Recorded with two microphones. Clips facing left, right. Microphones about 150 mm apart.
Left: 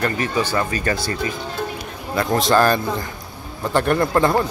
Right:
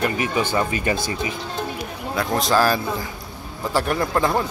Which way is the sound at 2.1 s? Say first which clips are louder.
Left 3 dB; centre (ahead or behind).